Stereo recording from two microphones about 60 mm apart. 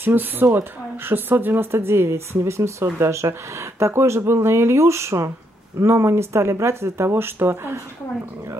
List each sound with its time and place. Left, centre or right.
0.0 s a woman's voice: right